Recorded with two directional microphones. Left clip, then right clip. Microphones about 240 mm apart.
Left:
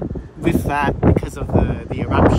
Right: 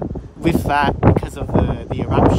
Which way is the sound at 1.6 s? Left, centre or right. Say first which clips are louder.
Right 1 dB; right.